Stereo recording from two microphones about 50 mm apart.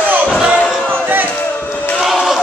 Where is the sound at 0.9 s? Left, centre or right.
Right.